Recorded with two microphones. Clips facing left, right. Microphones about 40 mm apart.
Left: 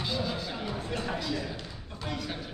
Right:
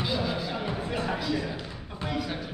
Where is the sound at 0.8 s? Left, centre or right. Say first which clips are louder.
Right 3 dB; centre.